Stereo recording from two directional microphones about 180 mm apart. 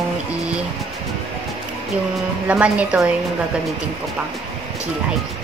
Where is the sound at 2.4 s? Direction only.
5° right (ahead or behind).